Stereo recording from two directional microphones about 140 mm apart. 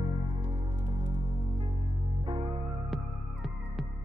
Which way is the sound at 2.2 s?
35° right (ahead or behind).